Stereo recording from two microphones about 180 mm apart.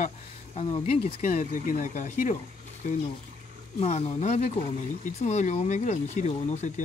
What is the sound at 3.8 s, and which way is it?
Speech, 35° left (ahead or behind).